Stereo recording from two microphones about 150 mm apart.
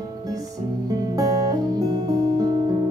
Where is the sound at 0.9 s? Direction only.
25° right (ahead or behind).